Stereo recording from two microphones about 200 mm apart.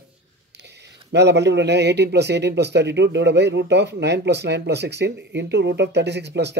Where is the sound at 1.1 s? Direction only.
60° right (ahead or behind).